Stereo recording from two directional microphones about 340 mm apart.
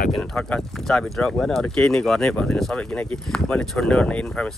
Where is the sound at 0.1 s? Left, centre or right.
Centre.